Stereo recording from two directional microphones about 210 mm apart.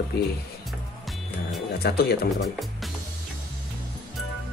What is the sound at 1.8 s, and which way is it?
Speech, 50° left (ahead or behind).